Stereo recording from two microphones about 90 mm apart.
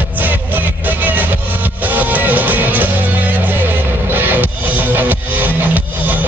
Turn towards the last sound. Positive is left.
turn(degrees=-20)  # may be behind; listen again after turning